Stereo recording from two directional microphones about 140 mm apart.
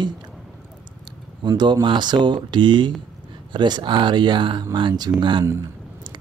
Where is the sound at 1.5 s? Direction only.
30° right (ahead or behind).